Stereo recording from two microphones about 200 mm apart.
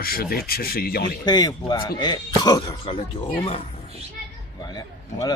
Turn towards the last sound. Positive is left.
turn(degrees=20)  # may be behind; listen again after turning